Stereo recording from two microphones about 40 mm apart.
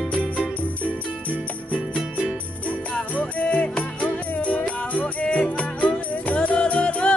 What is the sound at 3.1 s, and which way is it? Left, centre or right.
Music, left.